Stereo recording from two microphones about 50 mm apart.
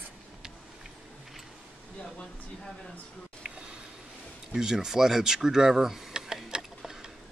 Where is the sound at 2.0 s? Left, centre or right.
Centre.